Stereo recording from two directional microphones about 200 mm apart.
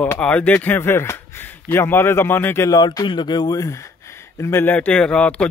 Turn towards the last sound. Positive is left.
turn(degrees=5)  # may be behind; listen again after turning